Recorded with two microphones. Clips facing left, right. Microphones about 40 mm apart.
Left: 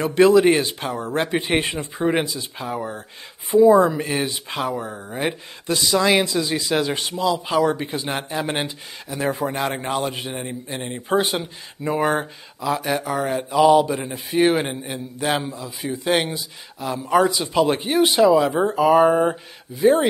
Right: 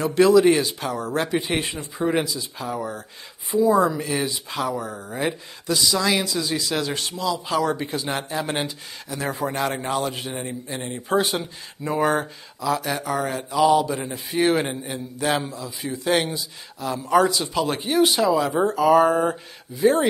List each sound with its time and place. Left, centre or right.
0.0 s speech: left
5.8 s speech: left; by 10.5 s centre
10.7 s speech: left